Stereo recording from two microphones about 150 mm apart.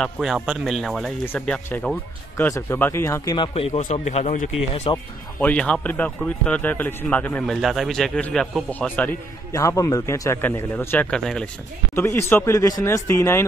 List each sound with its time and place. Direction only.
0.0 s a man's voice: centre (ahead or behind); by 3.3 s 20° left (ahead or behind)
3.3 s speech: 40° left (ahead or behind)
4.9 s speech: 10° left (ahead or behind)
7.4 s a man's voice: centre (ahead or behind)
9.5 s speech: 20° left (ahead or behind); by 11.4 s 5° left (ahead or behind)
11.9 s speech: 15° left (ahead or behind)